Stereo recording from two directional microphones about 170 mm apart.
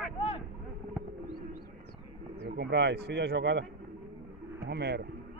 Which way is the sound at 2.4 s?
75° right (ahead or behind).